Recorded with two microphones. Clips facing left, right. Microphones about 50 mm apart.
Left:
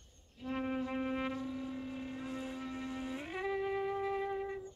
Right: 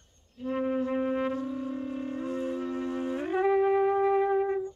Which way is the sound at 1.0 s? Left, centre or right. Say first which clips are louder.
Right 8 dB; right.